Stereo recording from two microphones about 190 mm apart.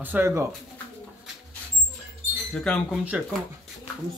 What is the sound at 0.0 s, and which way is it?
Speech, 10° right (ahead or behind).